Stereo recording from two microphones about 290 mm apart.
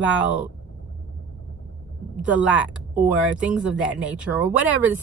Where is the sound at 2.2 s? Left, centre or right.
Centre.